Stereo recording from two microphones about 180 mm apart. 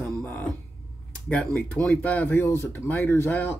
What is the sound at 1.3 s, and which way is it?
Speech, 5° left (ahead or behind).